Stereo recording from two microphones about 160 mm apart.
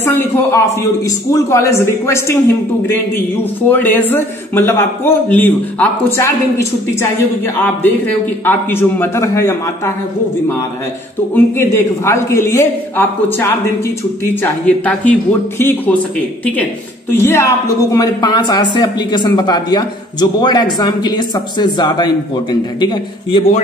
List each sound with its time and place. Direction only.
0.0 s a man's voice: 15° left (ahead or behind)
3.6 s a man's voice: 10° left (ahead or behind)
11.3 s a man's voice: 15° left (ahead or behind)
17.1 s a woman's voice: 15° left (ahead or behind)